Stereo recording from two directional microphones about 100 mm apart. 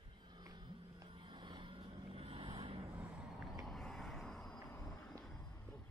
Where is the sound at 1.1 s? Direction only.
50° right (ahead or behind).